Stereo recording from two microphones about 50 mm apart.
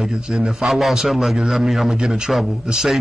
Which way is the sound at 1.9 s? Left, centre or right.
Centre.